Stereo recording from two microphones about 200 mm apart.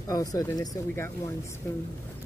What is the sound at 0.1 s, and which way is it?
Speech, 20° left (ahead or behind).